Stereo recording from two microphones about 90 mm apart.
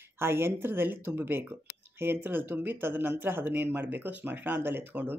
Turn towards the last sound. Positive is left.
turn(degrees=-20)  # may be behind; listen again after turning